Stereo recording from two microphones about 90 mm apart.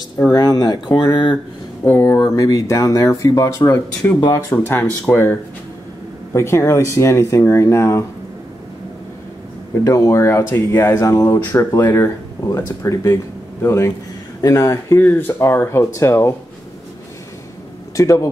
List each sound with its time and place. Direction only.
0.3 s speech: 45° left (ahead or behind)
0.8 s speech: 55° left (ahead or behind)
1.9 s speech: 25° left (ahead or behind)
2.1 s speech: 40° left (ahead or behind)
9.8 s speech: 35° left (ahead or behind)
17.9 s speech: 35° left (ahead or behind)